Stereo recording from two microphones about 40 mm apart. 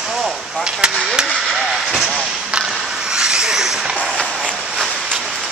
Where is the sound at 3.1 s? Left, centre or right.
Centre.